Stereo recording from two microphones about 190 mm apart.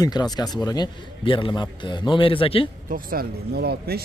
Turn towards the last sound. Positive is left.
turn(degrees=-55)  # may be behind; listen again after turning